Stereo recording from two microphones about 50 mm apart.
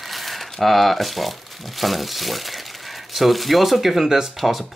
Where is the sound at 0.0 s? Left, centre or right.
Centre.